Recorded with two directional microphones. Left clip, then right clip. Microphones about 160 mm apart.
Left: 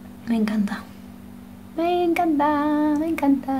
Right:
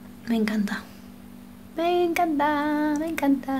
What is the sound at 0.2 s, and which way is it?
Child singing, centre (ahead or behind).